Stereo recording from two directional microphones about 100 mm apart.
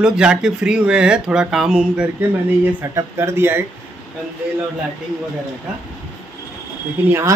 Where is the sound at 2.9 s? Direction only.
25° right (ahead or behind).